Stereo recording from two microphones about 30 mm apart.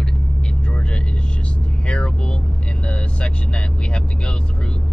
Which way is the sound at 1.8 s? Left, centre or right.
Left.